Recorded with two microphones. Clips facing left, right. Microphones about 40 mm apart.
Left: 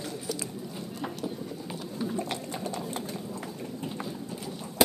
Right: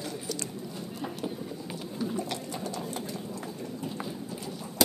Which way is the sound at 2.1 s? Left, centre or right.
Left.